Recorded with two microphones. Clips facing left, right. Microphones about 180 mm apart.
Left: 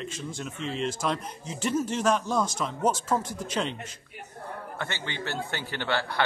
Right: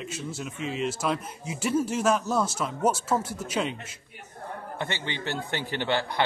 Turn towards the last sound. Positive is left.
turn(degrees=-15)  # may be behind; listen again after turning